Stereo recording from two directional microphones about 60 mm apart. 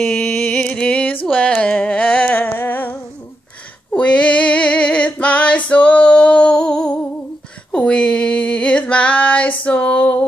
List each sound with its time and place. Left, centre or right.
0.0 s music: centre
0.6 s music: left
1.6 s humming: centre
3.9 s female singing: centre
7.7 s a sound: centre